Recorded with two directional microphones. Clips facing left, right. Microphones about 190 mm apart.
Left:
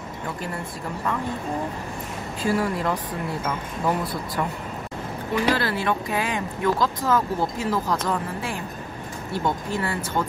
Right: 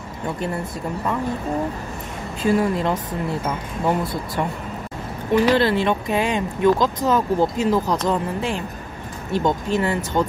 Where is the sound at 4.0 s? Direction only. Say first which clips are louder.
Right 3 dB; 25° right (ahead or behind).